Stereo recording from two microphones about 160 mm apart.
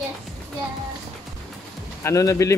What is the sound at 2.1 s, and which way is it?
Speech, 20° left (ahead or behind).